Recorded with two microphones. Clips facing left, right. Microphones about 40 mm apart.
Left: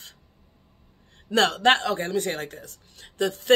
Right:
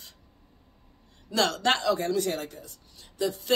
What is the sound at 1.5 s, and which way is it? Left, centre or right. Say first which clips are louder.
Speech: left 4 dB; left.